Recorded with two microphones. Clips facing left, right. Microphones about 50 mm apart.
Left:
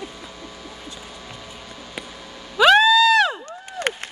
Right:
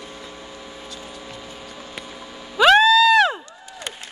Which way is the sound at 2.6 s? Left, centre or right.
Centre.